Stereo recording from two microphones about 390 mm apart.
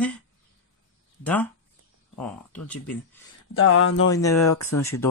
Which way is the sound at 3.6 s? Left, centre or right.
Left.